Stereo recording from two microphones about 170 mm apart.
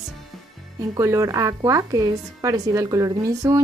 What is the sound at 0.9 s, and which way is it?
A woman's voice, 15° right (ahead or behind).